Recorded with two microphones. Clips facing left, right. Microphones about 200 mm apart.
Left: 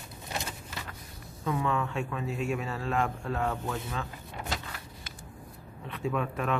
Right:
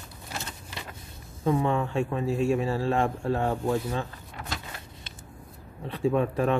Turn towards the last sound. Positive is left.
turn(degrees=-30)  # may be behind; listen again after turning